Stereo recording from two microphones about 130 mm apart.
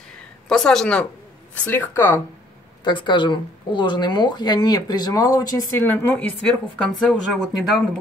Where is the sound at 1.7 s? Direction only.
15° left (ahead or behind).